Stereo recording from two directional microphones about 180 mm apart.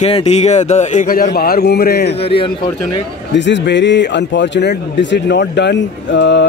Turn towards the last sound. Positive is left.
turn(degrees=80)